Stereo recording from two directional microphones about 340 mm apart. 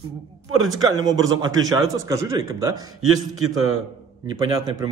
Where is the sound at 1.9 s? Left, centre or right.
Centre.